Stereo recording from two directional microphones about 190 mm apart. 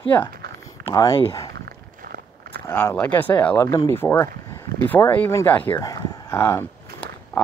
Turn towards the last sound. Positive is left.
turn(degrees=15)  # may be behind; listen again after turning